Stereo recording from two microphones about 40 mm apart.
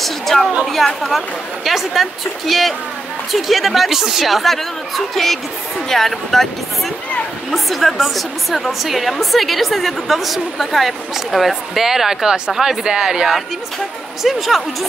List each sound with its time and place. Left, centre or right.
0.0 s a woman's voice: centre
4.3 s a woman's voice: centre
7.5 s a woman's voice: centre
14.2 s a woman's voice: centre